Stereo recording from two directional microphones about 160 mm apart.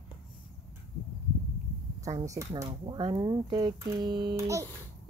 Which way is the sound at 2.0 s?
20° right (ahead or behind).